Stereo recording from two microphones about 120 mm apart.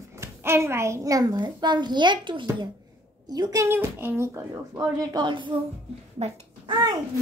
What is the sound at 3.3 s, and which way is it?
A child's voice, 30° right (ahead or behind).